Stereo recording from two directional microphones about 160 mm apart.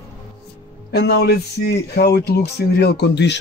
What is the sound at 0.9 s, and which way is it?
Speech, 90° left.